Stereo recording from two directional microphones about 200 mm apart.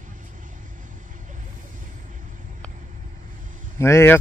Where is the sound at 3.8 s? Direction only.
10° left (ahead or behind).